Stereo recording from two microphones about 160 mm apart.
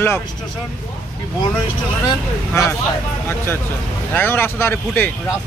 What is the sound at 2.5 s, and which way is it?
Speech, 15° left (ahead or behind).